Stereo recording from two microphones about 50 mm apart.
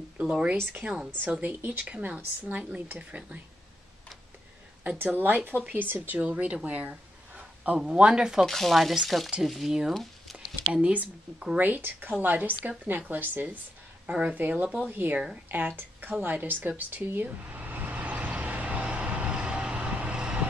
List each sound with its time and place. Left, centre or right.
0.2 s speech: right
0.8 s speech: centre
1.4 s speech: right
4.9 s speech: right
7.3 s a sound: right
7.8 s speech: centre
8.5 s speech: centre
9.9 s a sound: centre
10.7 s speech: right
14.0 s speech: right
15.5 s a sound: right; by 20.4 s centre